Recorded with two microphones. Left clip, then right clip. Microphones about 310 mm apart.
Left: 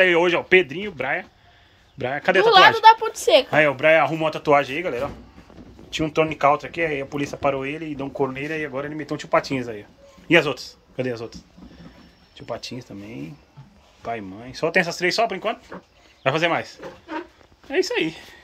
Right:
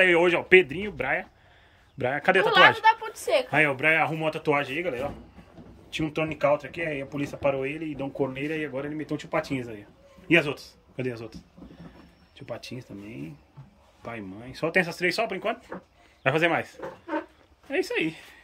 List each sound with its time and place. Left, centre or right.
0.0 s speech: centre
2.4 s a woman's voice: centre
3.5 s a man's voice: centre